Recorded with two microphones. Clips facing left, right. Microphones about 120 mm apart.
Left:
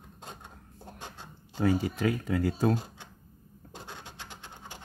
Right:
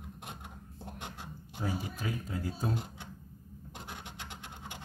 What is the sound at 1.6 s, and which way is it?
Speech, 70° left (ahead or behind).